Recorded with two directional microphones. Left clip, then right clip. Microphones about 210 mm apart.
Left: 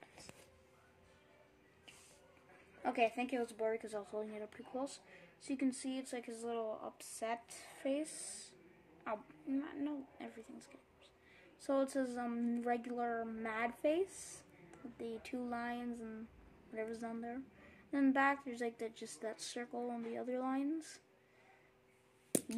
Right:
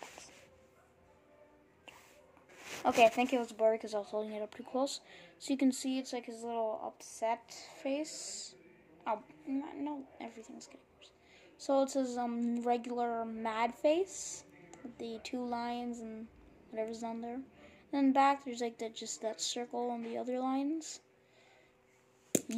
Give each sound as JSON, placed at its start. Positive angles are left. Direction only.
{"t": 2.8, "sound": "speech", "side_deg": 0}
{"t": 9.5, "sound": "a woman's voice", "side_deg": 20}
{"t": 11.6, "sound": "a woman's voice", "side_deg": 5}